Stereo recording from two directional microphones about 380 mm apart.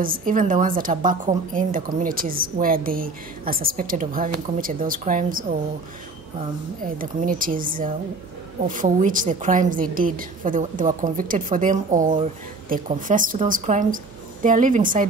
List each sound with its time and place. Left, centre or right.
0.0 s a woman's voice: right
7.0 s a woman's voice: right